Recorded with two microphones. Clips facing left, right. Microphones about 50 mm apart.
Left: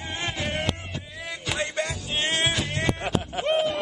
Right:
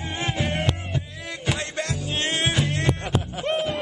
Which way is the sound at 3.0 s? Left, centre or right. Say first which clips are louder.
Even; centre.